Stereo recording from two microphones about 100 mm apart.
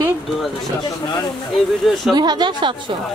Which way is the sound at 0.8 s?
45° left (ahead or behind).